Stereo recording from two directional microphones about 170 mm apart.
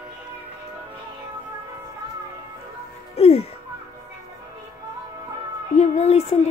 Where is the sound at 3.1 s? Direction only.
35° left (ahead or behind).